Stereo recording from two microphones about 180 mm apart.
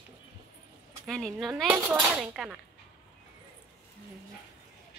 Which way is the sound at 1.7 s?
10° right (ahead or behind).